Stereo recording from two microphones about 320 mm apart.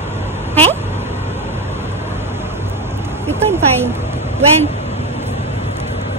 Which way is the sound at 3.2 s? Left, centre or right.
Centre.